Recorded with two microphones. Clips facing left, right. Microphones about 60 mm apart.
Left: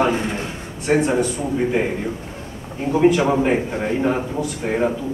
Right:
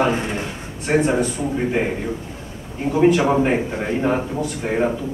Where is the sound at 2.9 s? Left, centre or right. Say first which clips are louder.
Even; centre.